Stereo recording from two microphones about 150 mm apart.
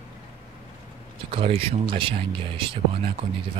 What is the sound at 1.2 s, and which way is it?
Speech, 35° right (ahead or behind).